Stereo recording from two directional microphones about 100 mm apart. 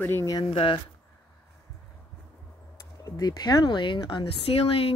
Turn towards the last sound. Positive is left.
turn(degrees=70)  # may be behind; listen again after turning